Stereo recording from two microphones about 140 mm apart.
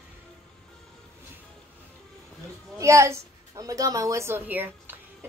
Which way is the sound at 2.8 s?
20° right (ahead or behind).